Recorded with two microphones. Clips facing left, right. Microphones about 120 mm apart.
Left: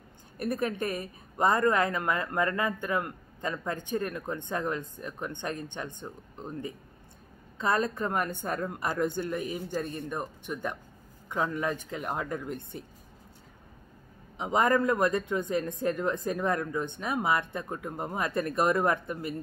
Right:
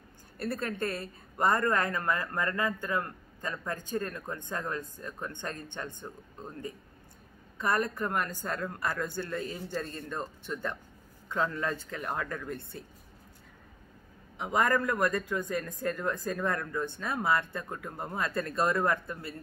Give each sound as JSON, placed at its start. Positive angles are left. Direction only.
{"t": 0.4, "sound": "speech", "side_deg": 20}
{"t": 14.4, "sound": "speech", "side_deg": 25}